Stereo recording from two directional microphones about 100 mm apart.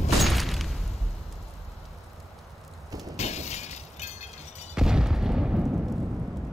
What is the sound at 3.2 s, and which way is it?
Shatter, 90° left.